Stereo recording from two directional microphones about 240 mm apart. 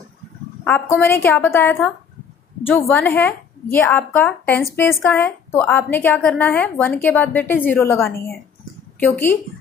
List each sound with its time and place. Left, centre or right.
0.7 s a woman's voice: centre
9.0 s a woman's voice: centre